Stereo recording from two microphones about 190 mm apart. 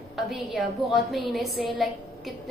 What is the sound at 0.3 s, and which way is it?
A woman's voice, centre (ahead or behind).